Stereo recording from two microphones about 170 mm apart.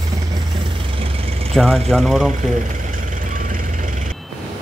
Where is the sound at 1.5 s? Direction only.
Centre (ahead or behind).